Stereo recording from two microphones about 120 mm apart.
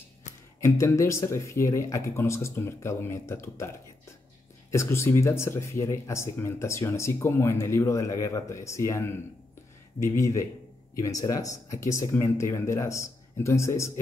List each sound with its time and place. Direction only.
0.6 s speech: 25° left (ahead or behind)